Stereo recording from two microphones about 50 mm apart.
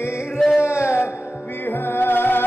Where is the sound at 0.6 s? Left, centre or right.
Left.